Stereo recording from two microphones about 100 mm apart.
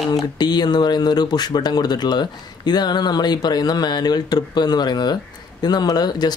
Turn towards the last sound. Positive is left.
turn(degrees=45)  # may be behind; listen again after turning